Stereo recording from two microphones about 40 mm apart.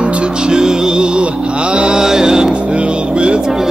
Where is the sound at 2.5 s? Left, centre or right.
Right.